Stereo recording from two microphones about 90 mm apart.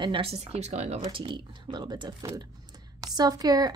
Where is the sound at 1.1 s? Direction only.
75° right (ahead or behind); by 3.7 s 45° right (ahead or behind).